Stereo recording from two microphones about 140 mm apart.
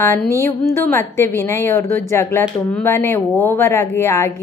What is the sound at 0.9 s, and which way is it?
A woman's voice, 20° left (ahead or behind).